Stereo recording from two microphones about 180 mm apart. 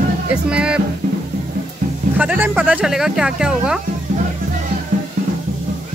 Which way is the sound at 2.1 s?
10° right (ahead or behind).